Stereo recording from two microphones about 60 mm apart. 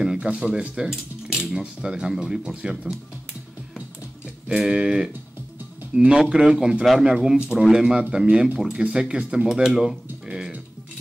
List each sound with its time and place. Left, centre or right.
0.0 s a sound: centre
0.4 s cutlery: centre
4.5 s cutlery: centre
10.2 s music: centre